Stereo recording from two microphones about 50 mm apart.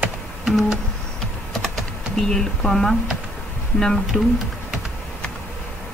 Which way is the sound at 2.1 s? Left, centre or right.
Centre.